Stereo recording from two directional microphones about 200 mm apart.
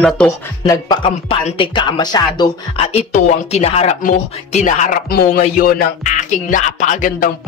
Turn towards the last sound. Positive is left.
turn(degrees=40)  # may be behind; listen again after turning